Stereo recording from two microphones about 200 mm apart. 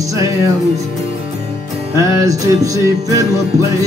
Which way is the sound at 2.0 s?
15° right (ahead or behind).